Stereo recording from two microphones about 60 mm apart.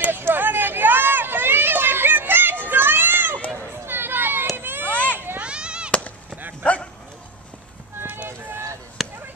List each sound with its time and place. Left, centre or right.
0.0 s a sound: right
3.5 s children playing: right
4.6 s baby cry: right
5.4 s chop: centre
5.9 s chop: left
6.6 s dog: left
9.0 s basketball bounce: centre